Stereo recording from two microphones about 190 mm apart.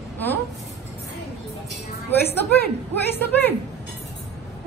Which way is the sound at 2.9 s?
10° left (ahead or behind).